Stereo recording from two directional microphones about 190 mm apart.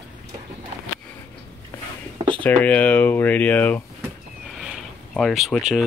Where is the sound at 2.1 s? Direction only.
25° right (ahead or behind).